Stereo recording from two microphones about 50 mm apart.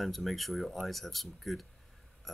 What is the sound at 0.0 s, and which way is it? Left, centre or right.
Speech, centre.